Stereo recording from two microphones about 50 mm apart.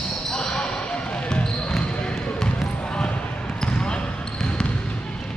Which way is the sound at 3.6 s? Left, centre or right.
Centre.